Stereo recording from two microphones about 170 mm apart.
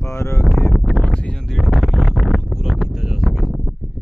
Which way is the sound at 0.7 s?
Centre (ahead or behind).